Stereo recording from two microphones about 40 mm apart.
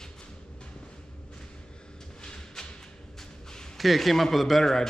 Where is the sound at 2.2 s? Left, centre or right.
Centre.